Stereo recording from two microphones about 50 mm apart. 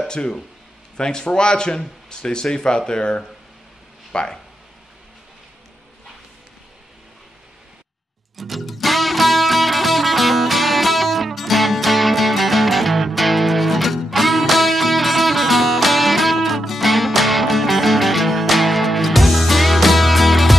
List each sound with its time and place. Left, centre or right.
0.1 s speech: centre
8.4 s music: centre